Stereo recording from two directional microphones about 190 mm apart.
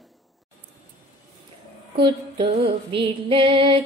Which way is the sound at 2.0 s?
25° right (ahead or behind).